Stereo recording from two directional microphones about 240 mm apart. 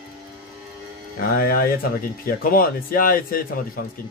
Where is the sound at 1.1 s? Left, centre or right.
Left.